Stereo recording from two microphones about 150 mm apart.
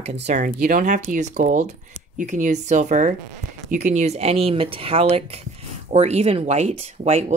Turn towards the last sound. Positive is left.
turn(degrees=-45)  # may be behind; listen again after turning